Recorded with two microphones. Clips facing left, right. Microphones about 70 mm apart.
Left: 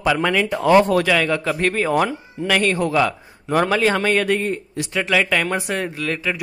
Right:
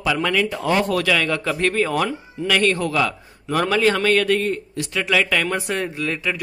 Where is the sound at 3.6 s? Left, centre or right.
Centre.